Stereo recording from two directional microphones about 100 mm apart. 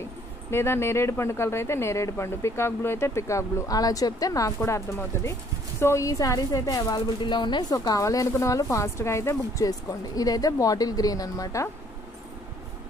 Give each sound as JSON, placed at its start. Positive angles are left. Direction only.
{"t": 0.5, "sound": "speech", "side_deg": 25}
{"t": 4.6, "sound": "speech", "side_deg": 25}
{"t": 7.7, "sound": "speech", "side_deg": 35}